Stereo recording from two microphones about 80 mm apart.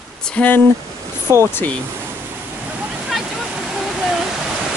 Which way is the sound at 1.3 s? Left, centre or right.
Right.